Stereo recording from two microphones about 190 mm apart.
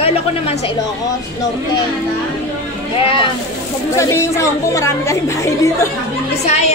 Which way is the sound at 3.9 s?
15° left (ahead or behind).